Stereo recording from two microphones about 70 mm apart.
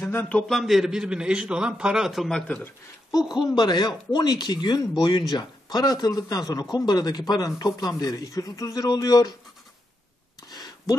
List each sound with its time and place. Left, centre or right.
0.0 s a man's voice: left
0.5 s a man's voice: centre
2.2 s speech: centre
3.1 s speech: left
6.7 s speech: left
8.2 s speech: left
10.5 s a sound: left